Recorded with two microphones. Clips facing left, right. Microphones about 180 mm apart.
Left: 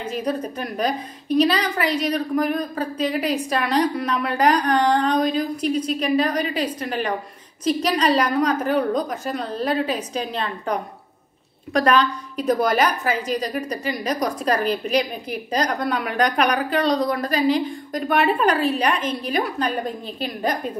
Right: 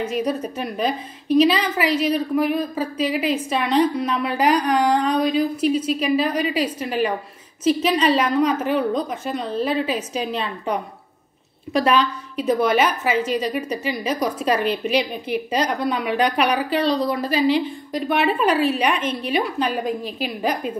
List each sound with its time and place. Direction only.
0.2 s a woman's voice: 5° right (ahead or behind)
5.0 s a woman's voice: 35° left (ahead or behind)
5.6 s a woman's voice: 5° right (ahead or behind)
13.1 s a woman's voice: 35° left (ahead or behind)
13.4 s a woman's voice: 5° right (ahead or behind)
17.3 s a woman's voice: 45° left (ahead or behind)
18.0 s a woman's voice: centre (ahead or behind)
18.9 s a woman's voice: 35° left (ahead or behind)
19.3 s a woman's voice: 5° right (ahead or behind)